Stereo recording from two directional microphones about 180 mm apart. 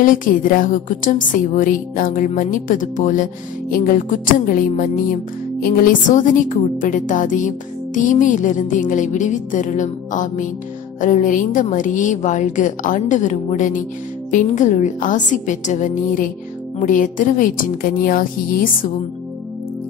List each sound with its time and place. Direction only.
0.0 s speech: 50° left (ahead or behind)